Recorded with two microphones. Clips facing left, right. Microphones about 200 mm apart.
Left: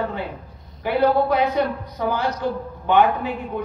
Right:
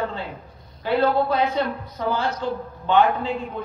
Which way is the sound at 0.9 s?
15° left (ahead or behind).